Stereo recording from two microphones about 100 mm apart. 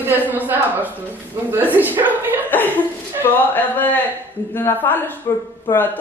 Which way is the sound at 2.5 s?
20° left (ahead or behind).